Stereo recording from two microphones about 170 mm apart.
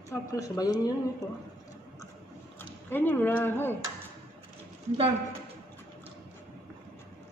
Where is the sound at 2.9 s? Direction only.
10° left (ahead or behind).